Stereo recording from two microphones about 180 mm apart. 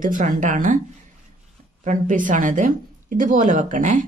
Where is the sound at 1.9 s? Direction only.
45° right (ahead or behind).